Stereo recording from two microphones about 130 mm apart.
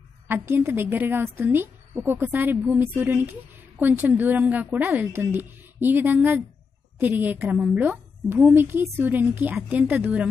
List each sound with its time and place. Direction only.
0.3 s a woman's voice: 15° right (ahead or behind)